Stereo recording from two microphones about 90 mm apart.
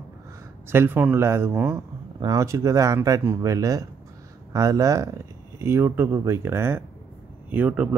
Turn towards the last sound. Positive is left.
turn(degrees=-15)  # may be behind; listen again after turning